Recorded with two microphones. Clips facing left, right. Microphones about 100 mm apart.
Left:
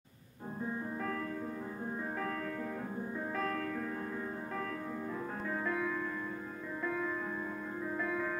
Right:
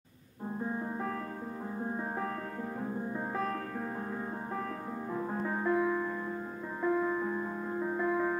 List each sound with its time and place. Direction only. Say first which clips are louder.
5.7 s music: right 8 dB; 30° right (ahead or behind)